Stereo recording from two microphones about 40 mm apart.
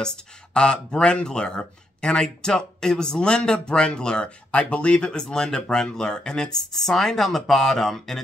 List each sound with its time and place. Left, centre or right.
0.6 s speech: left
6.7 s speech: centre